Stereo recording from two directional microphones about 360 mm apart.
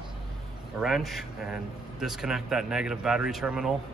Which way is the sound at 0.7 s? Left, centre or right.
Centre.